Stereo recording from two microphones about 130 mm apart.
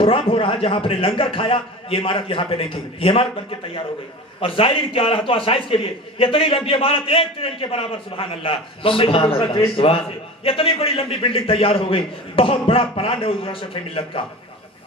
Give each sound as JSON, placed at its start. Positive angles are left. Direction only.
{"t": 0.0, "sound": "a man's voice", "side_deg": 45}